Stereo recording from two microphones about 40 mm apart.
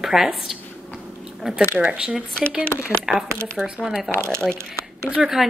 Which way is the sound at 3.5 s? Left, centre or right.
Centre.